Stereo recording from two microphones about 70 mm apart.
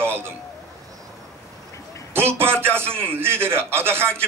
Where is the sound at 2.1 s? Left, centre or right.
Right.